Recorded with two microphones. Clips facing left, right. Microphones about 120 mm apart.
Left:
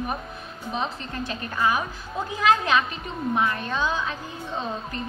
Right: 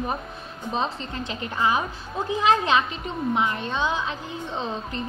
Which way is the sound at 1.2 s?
20° right (ahead or behind).